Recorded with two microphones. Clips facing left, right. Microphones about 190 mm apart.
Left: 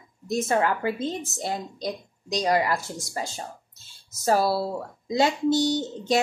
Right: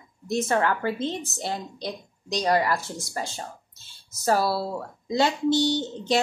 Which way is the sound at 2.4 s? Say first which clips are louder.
Even; 20° left (ahead or behind).